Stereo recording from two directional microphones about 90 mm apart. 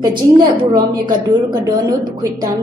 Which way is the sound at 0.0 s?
50° right (ahead or behind).